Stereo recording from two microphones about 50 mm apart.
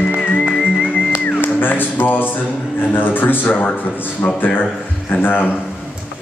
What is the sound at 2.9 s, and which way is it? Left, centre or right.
Speech, left.